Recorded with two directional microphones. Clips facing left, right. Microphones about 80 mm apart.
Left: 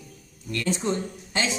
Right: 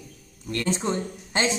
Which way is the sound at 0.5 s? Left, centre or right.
Right.